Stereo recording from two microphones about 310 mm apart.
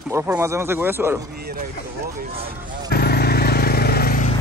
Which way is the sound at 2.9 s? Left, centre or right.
Left.